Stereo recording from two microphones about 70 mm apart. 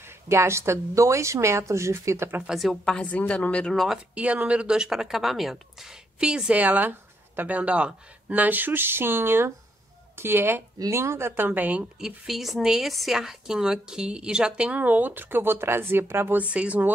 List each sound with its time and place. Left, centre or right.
0.0 s a woman's voice: right
2.4 s speech: centre
2.7 s a woman's voice: centre
3.7 s speech: centre
4.1 s speech: centre
6.5 s a woman's voice: right
12.0 s speech: centre; by 16.3 s right
16.3 s speech: centre